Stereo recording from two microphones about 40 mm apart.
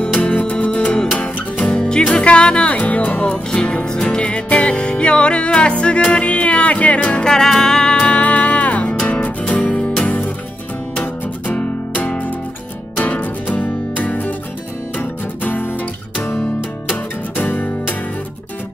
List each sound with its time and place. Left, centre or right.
0.2 s music: left
2.1 s speech: left
2.8 s speech: left
3.6 s music: left
7.0 s music: left
7.3 s music: centre; by 9.6 s left
9.6 s music: centre
10.0 s music: left
11.4 s music: left
16.9 s music: left